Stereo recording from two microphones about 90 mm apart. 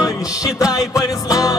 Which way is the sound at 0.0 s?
40° left (ahead or behind).